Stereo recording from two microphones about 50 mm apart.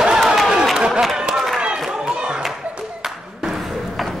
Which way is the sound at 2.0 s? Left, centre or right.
Centre.